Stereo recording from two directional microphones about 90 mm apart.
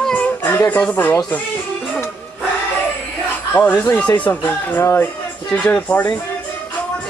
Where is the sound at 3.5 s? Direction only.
20° left (ahead or behind).